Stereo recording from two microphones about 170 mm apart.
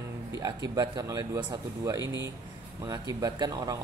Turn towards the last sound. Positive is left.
turn(degrees=-20)  # may be behind; listen again after turning